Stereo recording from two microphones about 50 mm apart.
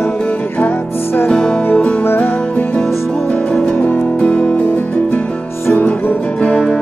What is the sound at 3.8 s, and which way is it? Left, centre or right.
Music, left.